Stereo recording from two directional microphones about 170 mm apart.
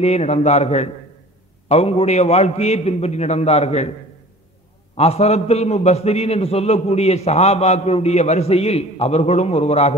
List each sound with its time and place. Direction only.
0.0 s a man's voice: 40° left (ahead or behind)
4.9 s a man's voice: 35° left (ahead or behind)